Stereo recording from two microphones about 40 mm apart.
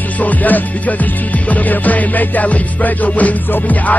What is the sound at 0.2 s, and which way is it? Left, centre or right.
Music, left.